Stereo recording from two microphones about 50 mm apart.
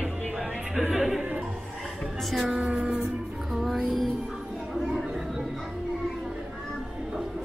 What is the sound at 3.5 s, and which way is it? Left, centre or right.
Music, centre.